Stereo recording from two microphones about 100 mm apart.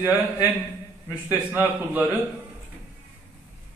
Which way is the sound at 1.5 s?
20° right (ahead or behind).